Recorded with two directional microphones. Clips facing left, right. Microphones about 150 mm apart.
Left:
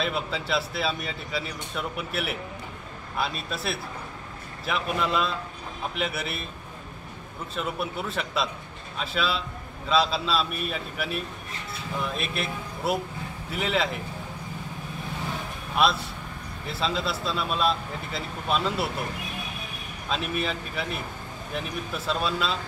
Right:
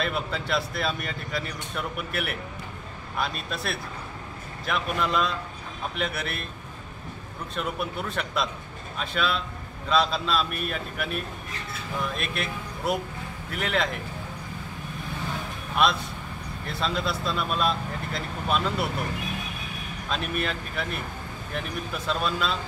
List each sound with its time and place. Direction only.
0.0 s speech: centre (ahead or behind)
7.5 s speech: 5° left (ahead or behind)
15.7 s speech: 5° left (ahead or behind)
20.1 s speech: centre (ahead or behind)